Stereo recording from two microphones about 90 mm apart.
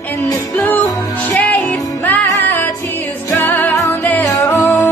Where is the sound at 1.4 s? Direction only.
20° left (ahead or behind).